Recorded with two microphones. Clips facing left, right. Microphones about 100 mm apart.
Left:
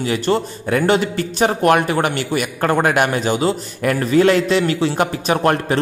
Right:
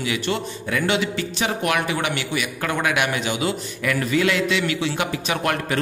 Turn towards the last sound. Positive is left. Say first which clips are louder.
# left 6 dB
turn(degrees=35)  # may be behind; listen again after turning